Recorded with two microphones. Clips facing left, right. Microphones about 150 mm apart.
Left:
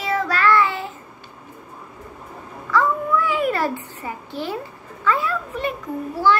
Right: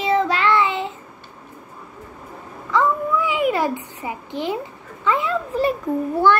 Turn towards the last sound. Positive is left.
turn(degrees=-60)  # may be behind; listen again after turning